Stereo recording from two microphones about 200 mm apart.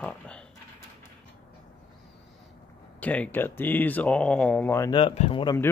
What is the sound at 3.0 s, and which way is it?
Speech, 10° left (ahead or behind).